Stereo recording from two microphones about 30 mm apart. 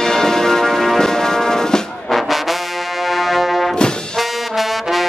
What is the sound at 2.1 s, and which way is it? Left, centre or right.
Brass instrument, centre.